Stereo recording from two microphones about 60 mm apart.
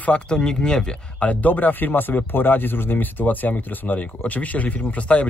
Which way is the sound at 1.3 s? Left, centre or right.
Left.